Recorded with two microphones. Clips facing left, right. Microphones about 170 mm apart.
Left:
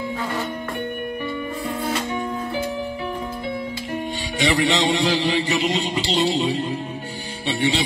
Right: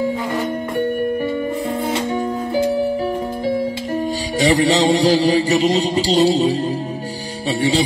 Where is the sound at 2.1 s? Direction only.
35° right (ahead or behind).